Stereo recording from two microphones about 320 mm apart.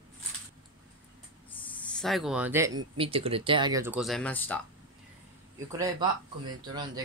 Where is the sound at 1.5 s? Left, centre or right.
Centre.